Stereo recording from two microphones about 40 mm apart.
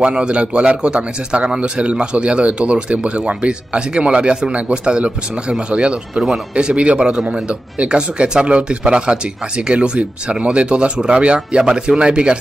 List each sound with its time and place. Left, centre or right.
0.0 s a man's voice: right